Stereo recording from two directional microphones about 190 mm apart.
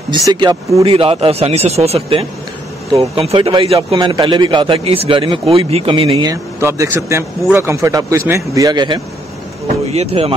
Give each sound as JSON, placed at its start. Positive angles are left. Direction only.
{"t": 0.3, "sound": "a man's voice", "side_deg": -20}
{"t": 6.3, "sound": "a man's voice", "side_deg": -15}
{"t": 10.2, "sound": "a man's voice", "side_deg": -25}